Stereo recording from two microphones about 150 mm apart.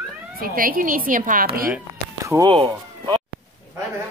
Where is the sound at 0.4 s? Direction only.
70° right (ahead or behind).